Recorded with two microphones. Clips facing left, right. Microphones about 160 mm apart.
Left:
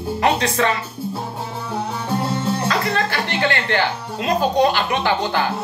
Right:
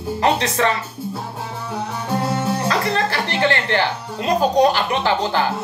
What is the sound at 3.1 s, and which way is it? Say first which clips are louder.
A man's voice: right 2 dB; 30° right (ahead or behind).